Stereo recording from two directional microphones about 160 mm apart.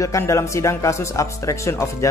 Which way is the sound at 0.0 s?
20° left (ahead or behind).